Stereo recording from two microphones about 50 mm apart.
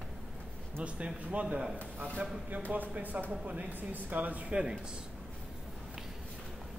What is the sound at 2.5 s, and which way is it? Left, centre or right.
Speech, right.